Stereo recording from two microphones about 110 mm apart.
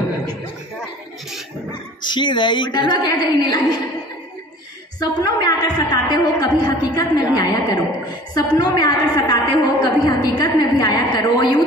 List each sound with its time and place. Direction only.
2.1 s a woman's voice: 45° left (ahead or behind)
5.0 s a woman's voice: 35° left (ahead or behind)